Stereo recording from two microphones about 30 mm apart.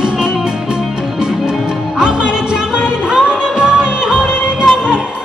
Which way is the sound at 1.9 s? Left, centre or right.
Right.